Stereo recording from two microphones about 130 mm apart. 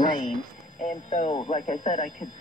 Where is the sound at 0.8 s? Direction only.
60° left (ahead or behind).